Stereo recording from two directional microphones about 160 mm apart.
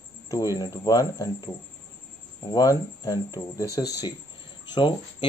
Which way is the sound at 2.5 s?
25° left (ahead or behind).